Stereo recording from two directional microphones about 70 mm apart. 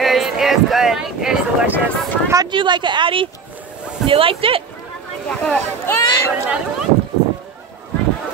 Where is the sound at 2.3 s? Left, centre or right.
Right.